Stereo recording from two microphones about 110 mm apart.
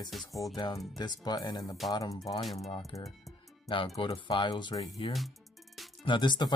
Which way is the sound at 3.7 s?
50° left (ahead or behind).